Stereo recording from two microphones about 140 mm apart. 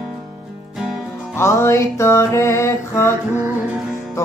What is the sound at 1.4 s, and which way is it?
Music, 20° left (ahead or behind).